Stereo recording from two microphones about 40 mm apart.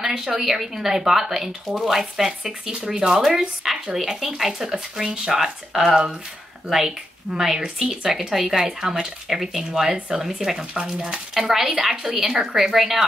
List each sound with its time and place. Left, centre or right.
0.0 s speech: centre
7.3 s speech: centre
10.6 s speech: right
11.3 s speech: centre